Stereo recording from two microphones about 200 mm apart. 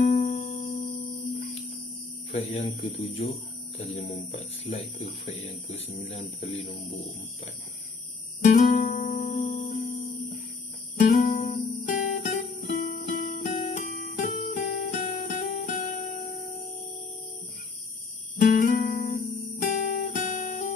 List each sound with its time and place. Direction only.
0.1 s music: 50° left (ahead or behind)
0.6 s music: 25° left (ahead or behind)
1.0 s music: 40° left (ahead or behind)
2.3 s speech: 30° left (ahead or behind)
8.4 s music: 40° left (ahead or behind)
9.8 s music: 35° left (ahead or behind)
11.0 s guitar: 45° left (ahead or behind)
11.8 s music: 40° left (ahead or behind)
18.4 s music: 45° left (ahead or behind)
19.1 s music: 40° left (ahead or behind)